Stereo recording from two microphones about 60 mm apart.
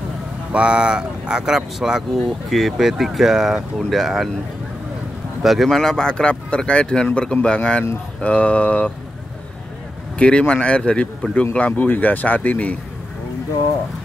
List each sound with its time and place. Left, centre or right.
0.5 s speech: centre
5.4 s speech: centre; by 8.9 s left
10.1 s speech: centre